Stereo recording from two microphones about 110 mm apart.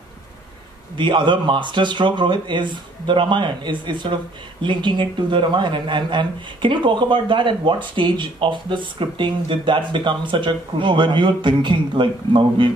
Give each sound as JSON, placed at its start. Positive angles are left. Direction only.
{"t": 0.9, "sound": "speech", "side_deg": -45}